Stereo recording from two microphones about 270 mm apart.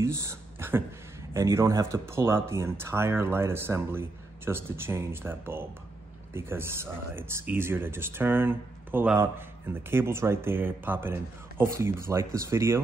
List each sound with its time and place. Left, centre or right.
0.0 s speech: centre